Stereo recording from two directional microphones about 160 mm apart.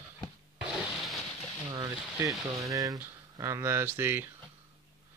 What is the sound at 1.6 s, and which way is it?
Speech, 25° right (ahead or behind).